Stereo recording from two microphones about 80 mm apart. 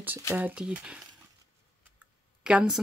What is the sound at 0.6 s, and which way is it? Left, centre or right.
Speech, centre.